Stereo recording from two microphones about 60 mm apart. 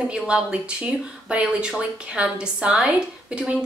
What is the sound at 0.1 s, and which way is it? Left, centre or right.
Speech, centre.